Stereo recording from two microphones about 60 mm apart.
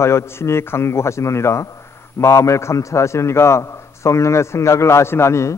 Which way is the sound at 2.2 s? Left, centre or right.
Left.